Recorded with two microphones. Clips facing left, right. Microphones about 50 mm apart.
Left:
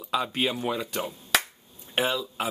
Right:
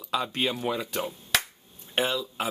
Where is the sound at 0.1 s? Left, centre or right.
Centre.